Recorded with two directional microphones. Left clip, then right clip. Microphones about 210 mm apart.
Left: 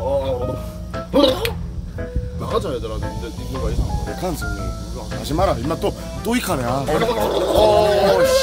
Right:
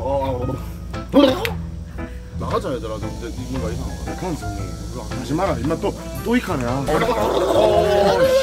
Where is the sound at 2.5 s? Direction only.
Centre (ahead or behind).